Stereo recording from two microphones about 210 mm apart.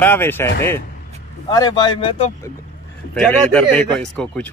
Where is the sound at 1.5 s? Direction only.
20° left (ahead or behind).